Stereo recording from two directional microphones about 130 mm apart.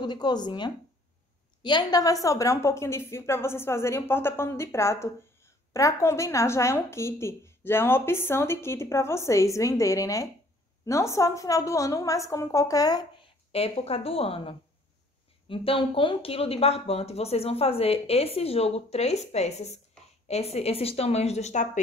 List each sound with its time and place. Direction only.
0.0 s a woman's voice: 35° left (ahead or behind)
13.2 s speech: 50° left (ahead or behind)